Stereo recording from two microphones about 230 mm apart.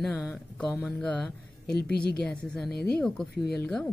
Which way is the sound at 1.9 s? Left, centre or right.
Left.